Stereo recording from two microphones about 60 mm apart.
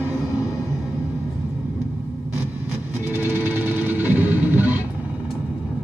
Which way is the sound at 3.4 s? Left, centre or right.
Right.